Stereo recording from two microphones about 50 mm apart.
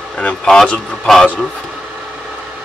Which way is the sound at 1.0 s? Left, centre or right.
Centre.